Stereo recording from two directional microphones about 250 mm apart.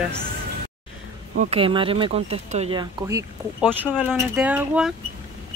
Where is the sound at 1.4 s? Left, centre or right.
Right; by 4.9 s centre.